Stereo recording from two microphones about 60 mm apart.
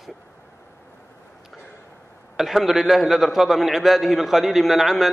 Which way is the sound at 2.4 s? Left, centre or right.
Centre.